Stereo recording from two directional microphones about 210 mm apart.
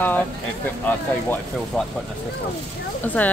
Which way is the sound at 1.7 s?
Centre (ahead or behind).